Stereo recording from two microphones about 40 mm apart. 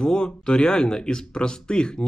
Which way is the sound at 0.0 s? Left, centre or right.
Centre.